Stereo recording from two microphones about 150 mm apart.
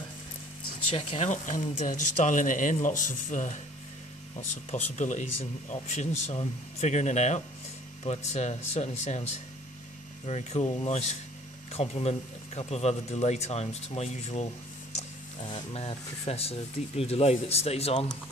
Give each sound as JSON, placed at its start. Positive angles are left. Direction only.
{"t": 0.9, "sound": "speech", "side_deg": 45}
{"t": 4.6, "sound": "speech", "side_deg": 50}
{"t": 15.4, "sound": "speech", "side_deg": 40}